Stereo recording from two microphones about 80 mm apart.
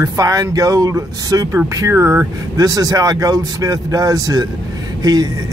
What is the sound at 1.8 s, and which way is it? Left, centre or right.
Speech, right.